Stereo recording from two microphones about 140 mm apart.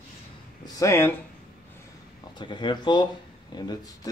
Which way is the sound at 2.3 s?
35° left (ahead or behind).